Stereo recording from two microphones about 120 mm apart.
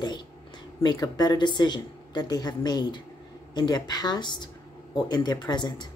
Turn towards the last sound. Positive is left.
turn(degrees=35)  # may be behind; listen again after turning